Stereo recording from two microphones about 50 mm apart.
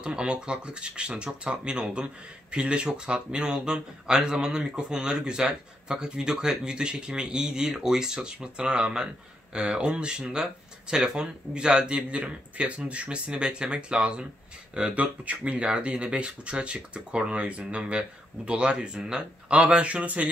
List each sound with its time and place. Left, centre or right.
0.0 s speech: centre